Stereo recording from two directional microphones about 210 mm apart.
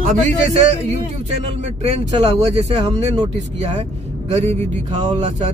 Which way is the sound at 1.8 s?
30° right (ahead or behind).